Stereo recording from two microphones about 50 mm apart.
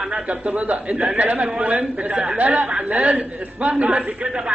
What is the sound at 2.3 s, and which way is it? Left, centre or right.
A man's voice, right.